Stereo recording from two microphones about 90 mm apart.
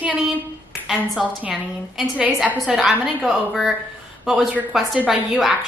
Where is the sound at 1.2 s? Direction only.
Centre (ahead or behind).